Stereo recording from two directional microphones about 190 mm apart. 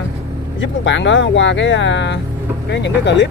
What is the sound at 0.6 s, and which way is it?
Speech, 70° left (ahead or behind).